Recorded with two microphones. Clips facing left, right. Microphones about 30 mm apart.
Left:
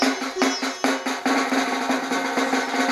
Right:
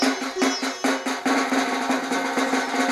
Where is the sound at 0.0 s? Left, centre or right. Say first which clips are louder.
Left 1 dB; centre.